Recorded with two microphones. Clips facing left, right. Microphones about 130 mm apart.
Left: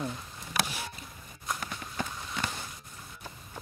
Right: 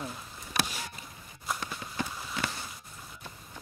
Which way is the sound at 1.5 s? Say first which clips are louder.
Right 1 dB; 5° right (ahead or behind).